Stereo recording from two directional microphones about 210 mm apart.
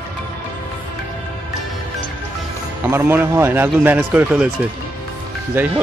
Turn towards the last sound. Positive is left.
turn(degrees=-10)  # may be behind; listen again after turning